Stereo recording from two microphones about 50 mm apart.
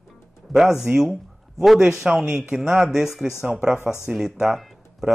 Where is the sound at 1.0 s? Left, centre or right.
Centre.